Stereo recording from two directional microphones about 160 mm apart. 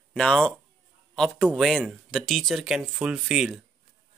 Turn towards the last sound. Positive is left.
turn(degrees=-5)  # may be behind; listen again after turning